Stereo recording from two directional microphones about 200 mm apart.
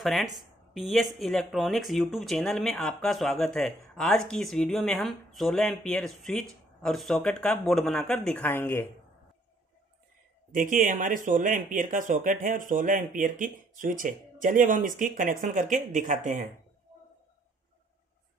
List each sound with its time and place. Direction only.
0.0 s a woman's voice: centre (ahead or behind)
10.5 s speech: 40° right (ahead or behind)